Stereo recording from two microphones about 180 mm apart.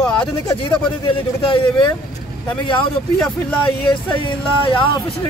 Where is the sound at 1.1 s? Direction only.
30° left (ahead or behind).